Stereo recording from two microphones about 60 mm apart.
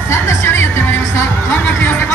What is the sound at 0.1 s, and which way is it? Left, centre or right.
Music, left.